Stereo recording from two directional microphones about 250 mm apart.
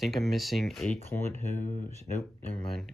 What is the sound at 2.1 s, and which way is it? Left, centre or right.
Speech, centre.